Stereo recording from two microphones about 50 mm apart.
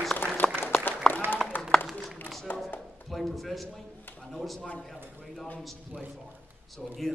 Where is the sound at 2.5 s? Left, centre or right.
Left.